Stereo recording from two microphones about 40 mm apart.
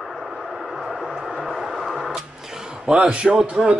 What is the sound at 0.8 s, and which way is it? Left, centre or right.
Music, centre.